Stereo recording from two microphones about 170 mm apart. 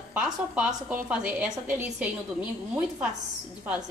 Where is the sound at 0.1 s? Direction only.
5° right (ahead or behind).